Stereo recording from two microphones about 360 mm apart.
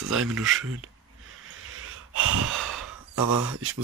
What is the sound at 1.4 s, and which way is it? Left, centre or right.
Wheeze, right.